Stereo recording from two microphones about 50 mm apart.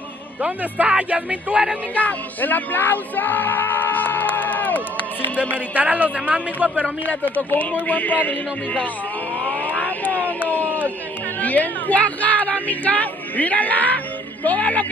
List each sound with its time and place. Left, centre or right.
0.4 s speech: right
2.0 s music: left
5.8 s speech: right
7.1 s speech: left
9.4 s vehicle: right
9.7 s a sound: left
11.4 s speech: left